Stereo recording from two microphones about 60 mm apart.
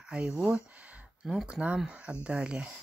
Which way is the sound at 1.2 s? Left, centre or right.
Centre.